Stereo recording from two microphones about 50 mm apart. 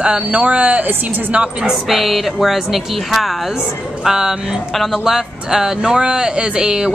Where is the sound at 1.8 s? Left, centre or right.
Centre.